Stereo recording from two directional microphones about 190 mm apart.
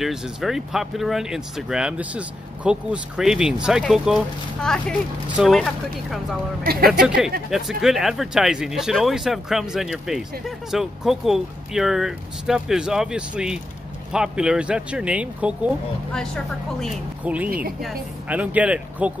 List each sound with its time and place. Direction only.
0.0 s speech: centre (ahead or behind)
6.6 s speech: 50° right (ahead or behind)
7.5 s speech: centre (ahead or behind)
16.8 s speech: 5° right (ahead or behind)